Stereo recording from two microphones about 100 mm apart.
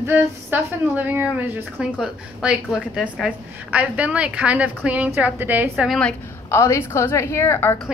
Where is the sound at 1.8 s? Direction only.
10° right (ahead or behind).